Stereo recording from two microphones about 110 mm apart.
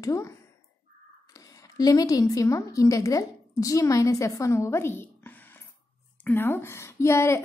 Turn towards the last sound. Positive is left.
turn(degrees=25)  # may be behind; listen again after turning